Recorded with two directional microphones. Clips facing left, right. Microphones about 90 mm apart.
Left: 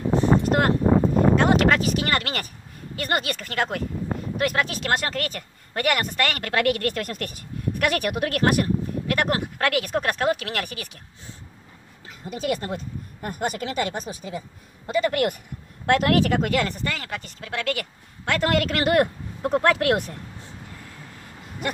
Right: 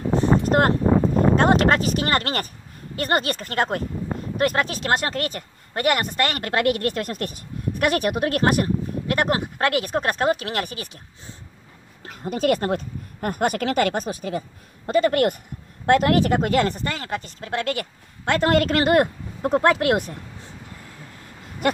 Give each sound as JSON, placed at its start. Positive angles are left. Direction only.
{"t": 0.5, "sound": "a sound", "side_deg": -35}
{"t": 1.3, "sound": "speech", "side_deg": -40}
{"t": 12.0, "sound": "speech", "side_deg": -60}
{"t": 14.9, "sound": "speech", "side_deg": -40}
{"t": 15.8, "sound": "speech", "side_deg": -25}